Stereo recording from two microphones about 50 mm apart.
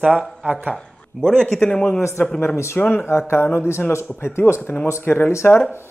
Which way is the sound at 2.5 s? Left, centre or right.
Left.